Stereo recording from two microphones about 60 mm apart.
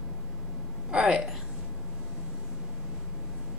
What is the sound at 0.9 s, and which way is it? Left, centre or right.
Speech, centre.